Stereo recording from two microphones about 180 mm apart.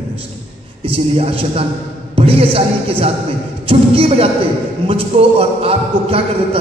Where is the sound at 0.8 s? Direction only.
30° right (ahead or behind).